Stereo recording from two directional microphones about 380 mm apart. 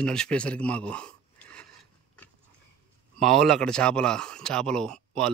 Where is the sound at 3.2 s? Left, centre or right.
Centre.